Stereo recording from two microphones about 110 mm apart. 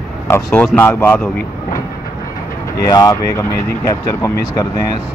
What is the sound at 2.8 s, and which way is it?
Speech, 35° left (ahead or behind).